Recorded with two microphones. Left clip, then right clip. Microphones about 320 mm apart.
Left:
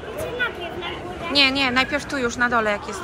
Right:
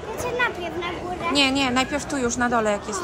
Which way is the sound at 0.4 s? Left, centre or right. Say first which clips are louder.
Right 2 dB; right.